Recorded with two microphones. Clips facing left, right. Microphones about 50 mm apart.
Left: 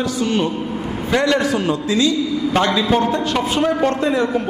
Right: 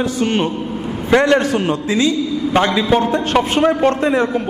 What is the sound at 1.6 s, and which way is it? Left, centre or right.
Speech, right.